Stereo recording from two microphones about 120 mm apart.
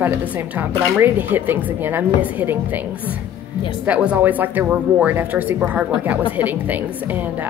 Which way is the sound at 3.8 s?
10° right (ahead or behind).